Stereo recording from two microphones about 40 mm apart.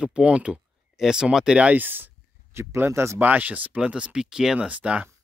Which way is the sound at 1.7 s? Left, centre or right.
Right.